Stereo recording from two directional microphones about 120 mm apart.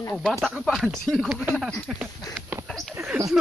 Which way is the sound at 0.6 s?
Centre (ahead or behind).